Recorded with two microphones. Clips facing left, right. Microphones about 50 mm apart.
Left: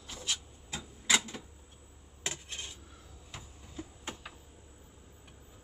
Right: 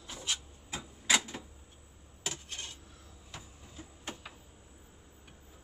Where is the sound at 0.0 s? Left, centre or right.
Centre.